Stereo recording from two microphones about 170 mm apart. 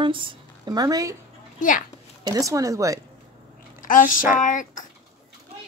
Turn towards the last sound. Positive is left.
turn(degrees=50)  # may be behind; listen again after turning